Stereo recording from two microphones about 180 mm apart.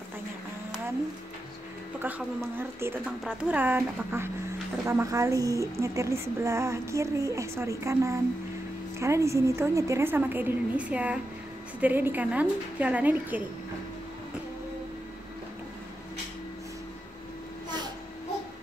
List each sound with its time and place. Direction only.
2.0 s a woman's voice: 10° right (ahead or behind)